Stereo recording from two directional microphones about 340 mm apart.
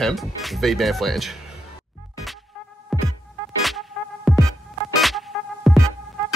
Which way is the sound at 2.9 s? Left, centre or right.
Centre.